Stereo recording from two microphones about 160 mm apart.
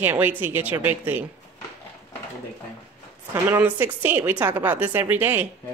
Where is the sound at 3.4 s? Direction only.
10° right (ahead or behind).